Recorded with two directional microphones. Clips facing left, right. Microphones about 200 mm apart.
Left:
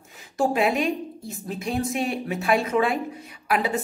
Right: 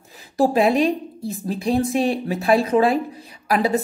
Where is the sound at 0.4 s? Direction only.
35° right (ahead or behind).